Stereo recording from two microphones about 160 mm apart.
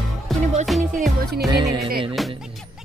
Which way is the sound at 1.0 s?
65° right (ahead or behind).